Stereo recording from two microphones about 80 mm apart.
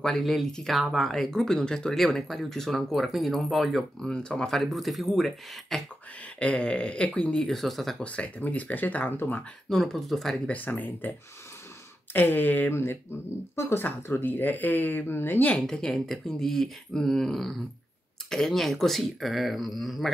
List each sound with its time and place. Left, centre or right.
0.0 s speech: centre
6.4 s speech: centre
8.0 s speech: centre
9.7 s speech: centre
10.5 s speech: left
12.1 s speech: left
15.5 s speech: centre